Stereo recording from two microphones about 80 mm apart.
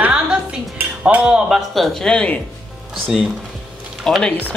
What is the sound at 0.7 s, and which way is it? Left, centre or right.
Cutlery, centre.